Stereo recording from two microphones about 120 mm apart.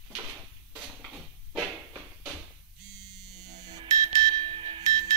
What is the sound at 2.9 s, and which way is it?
Music, 35° right (ahead or behind).